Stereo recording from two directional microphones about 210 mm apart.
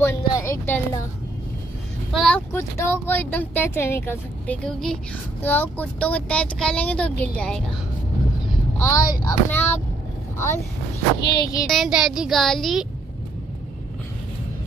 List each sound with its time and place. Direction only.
0.0 s a sound: 10° left (ahead or behind)
2.1 s speech: 5° left (ahead or behind)
8.7 s speech: 15° left (ahead or behind)
11.1 s speech: 55° left (ahead or behind)
11.6 s speech: centre (ahead or behind)